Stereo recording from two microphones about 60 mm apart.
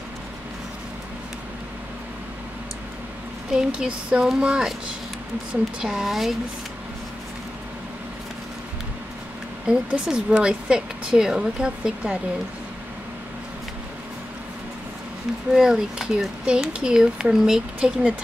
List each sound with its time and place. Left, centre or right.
3.5 s speech: centre
5.9 s speech: centre
9.7 s speech: centre
15.5 s speech: centre